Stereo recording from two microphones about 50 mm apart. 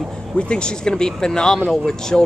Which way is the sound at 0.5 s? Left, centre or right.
Centre.